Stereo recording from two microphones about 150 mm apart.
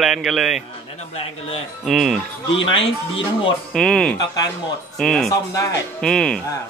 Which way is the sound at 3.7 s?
5° left (ahead or behind).